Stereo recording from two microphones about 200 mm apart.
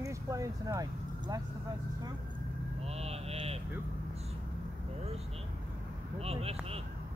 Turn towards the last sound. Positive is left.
turn(degrees=-30)  # may be behind; listen again after turning